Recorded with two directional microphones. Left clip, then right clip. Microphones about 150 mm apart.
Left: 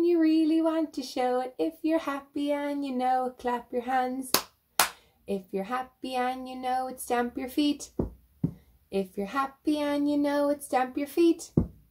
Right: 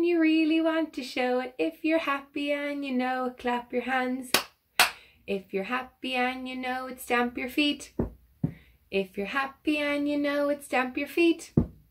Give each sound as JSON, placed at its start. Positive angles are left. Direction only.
{"t": 0.0, "sound": "a sound", "side_deg": 15}
{"t": 1.4, "sound": "speech", "side_deg": 15}
{"t": 8.9, "sound": "speech", "side_deg": 15}